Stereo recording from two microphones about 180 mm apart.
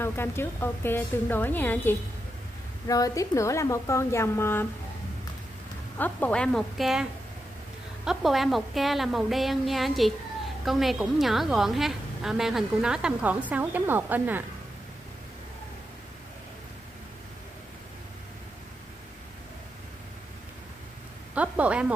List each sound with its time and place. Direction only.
0.0 s a woman's voice: 15° left (ahead or behind)
5.9 s a woman's voice: 10° left (ahead or behind); by 14.4 s 10° right (ahead or behind)
21.4 s speech: 5° right (ahead or behind)